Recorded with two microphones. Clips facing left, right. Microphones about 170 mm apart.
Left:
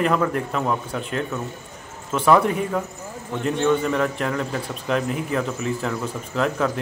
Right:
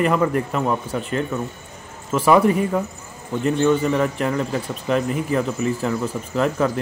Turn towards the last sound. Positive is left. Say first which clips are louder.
# right 3 dB
turn(degrees=0)  # may be behind; listen again after turning